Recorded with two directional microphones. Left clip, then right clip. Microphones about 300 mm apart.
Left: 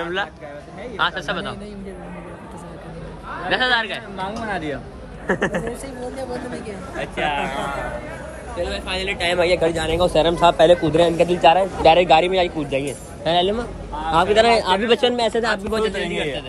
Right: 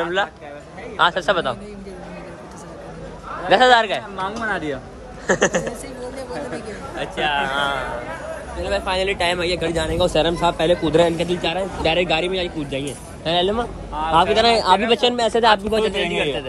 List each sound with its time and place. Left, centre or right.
0.0 s a man's voice: centre
3.4 s a man's voice: centre
7.0 s a man's voice: centre
8.6 s a man's voice: centre
11.0 s a man's voice: centre
11.2 s a man's voice: centre